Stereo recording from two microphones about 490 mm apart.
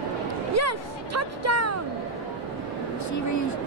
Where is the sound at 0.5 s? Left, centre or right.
Right.